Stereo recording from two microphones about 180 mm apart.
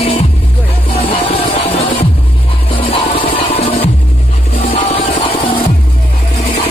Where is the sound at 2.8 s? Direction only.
35° left (ahead or behind).